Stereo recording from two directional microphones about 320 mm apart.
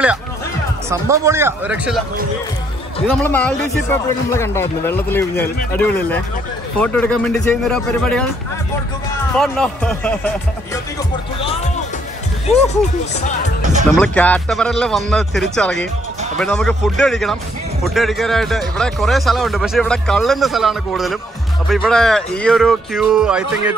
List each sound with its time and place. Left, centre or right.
0.8 s speech: centre
3.1 s speech: centre
9.4 s speech: centre
11.3 s music: centre
12.4 s speech: left
13.9 s speech: centre